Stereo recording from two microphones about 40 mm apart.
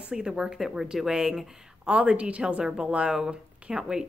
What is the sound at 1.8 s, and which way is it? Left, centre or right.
A woman's voice, right.